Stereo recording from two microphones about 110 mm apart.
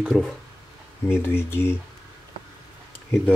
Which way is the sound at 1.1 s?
20° left (ahead or behind).